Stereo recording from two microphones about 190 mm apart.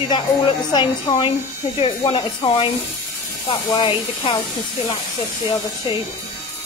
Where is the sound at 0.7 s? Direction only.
25° left (ahead or behind).